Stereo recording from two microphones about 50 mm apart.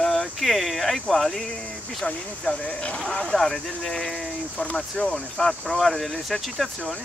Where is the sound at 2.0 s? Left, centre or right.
Centre.